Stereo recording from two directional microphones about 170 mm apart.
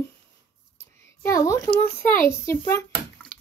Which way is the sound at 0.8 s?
15° left (ahead or behind).